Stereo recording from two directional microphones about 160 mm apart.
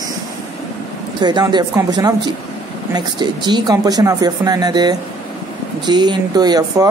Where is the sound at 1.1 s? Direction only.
25° right (ahead or behind).